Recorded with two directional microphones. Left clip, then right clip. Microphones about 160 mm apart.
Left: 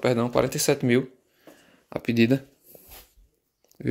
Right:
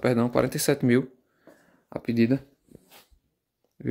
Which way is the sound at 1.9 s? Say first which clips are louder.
Left 2 dB; 15° right (ahead or behind).